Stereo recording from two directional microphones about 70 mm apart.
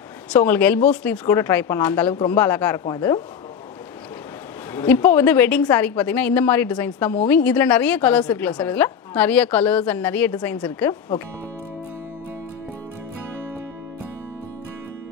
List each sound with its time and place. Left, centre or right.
0.4 s a woman's voice: left
1.2 s a woman's voice: left
4.8 s a woman's voice: left